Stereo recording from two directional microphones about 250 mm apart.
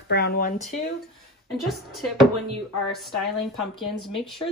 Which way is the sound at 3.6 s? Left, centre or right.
Centre.